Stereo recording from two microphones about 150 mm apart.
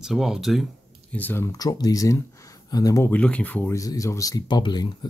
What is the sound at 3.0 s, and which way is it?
Speech, 10° left (ahead or behind).